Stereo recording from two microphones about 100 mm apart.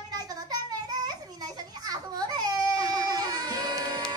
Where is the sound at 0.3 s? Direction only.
40° right (ahead or behind).